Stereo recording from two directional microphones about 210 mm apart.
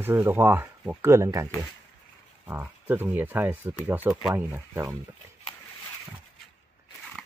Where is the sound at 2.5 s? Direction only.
10° right (ahead or behind).